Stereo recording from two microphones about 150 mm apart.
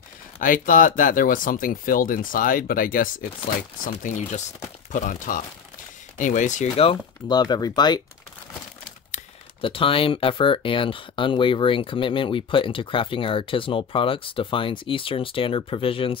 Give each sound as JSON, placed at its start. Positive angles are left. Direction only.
{"t": 0.4, "sound": "speech", "side_deg": 65}
{"t": 4.9, "sound": "speech", "side_deg": 60}
{"t": 7.2, "sound": "speech", "side_deg": 30}
{"t": 9.6, "sound": "speech", "side_deg": 35}